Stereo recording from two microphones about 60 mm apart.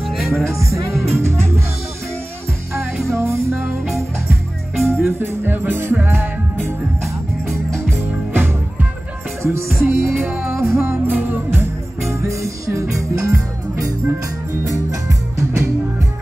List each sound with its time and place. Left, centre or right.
0.0 s music: centre
0.5 s speech: right
1.0 s music: right
2.7 s music: right
4.8 s speech: right
5.9 s music: right
8.3 s music: right
9.4 s music: right
12.1 s music: right
15.0 s music: right